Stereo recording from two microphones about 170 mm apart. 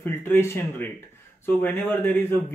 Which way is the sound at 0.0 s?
10° left (ahead or behind).